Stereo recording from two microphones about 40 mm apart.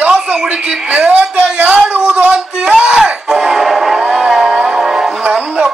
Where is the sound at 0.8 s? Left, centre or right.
Right.